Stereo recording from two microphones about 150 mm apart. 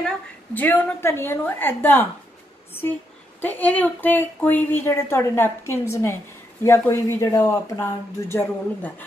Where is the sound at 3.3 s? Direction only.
10° left (ahead or behind).